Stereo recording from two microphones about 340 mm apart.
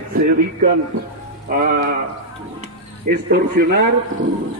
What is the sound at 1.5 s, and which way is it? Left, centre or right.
Speech, right.